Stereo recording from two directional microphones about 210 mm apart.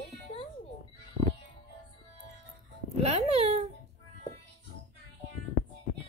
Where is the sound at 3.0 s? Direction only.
30° right (ahead or behind).